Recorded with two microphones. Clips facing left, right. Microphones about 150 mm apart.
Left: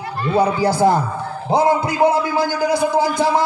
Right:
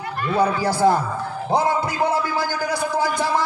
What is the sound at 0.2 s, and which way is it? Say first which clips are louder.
A man's voice: left 3 dB; 25° left (ahead or behind).